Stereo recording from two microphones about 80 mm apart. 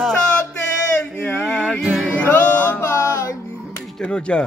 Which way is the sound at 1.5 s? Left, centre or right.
Centre.